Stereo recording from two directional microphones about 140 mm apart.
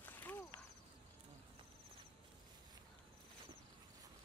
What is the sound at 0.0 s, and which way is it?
Walk, 15° left (ahead or behind).